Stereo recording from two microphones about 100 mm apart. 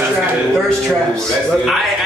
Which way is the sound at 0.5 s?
5° left (ahead or behind).